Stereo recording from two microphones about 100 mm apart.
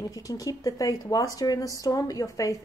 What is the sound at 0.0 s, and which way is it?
A woman's voice, 35° left (ahead or behind).